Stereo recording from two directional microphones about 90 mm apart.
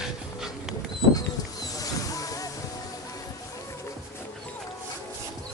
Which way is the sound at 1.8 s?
40° left (ahead or behind).